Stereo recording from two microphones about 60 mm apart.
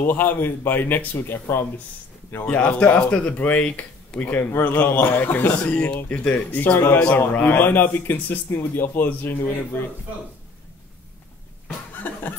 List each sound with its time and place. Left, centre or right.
0.0 s a man's voice: left
2.4 s speech: left
5.7 s a man's voice: left
12.0 s a sound: left